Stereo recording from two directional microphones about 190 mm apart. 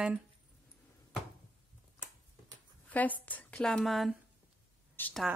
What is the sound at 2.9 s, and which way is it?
Speech, 10° left (ahead or behind).